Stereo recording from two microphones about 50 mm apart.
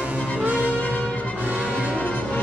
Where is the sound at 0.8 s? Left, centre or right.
Left.